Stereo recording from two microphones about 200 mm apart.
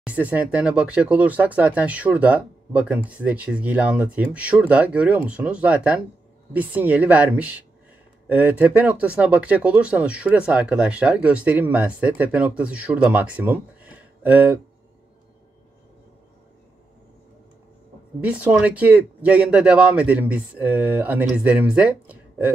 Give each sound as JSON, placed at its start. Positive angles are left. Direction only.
{"t": 0.0, "sound": "speech", "side_deg": -5}
{"t": 18.2, "sound": "speech", "side_deg": -5}